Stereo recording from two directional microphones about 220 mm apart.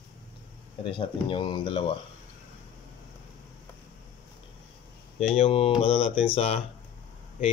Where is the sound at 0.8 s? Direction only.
25° left (ahead or behind).